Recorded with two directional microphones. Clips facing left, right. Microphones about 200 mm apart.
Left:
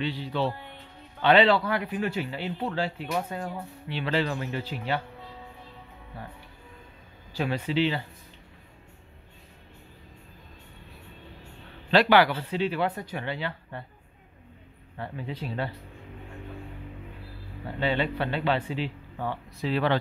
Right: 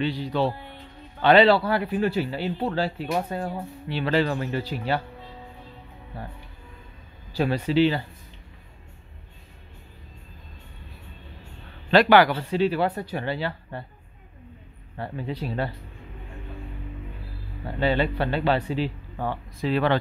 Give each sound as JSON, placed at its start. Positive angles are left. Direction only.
{"t": 0.0, "sound": "music", "side_deg": -45}
{"t": 1.2, "sound": "a man's voice", "side_deg": -40}
{"t": 7.3, "sound": "a man's voice", "side_deg": -40}
{"t": 11.9, "sound": "a man's voice", "side_deg": -50}
{"t": 15.0, "sound": "a man's voice", "side_deg": -40}
{"t": 17.7, "sound": "a man's voice", "side_deg": -40}